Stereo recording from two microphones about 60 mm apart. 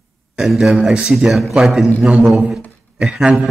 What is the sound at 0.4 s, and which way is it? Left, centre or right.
A man's voice, centre.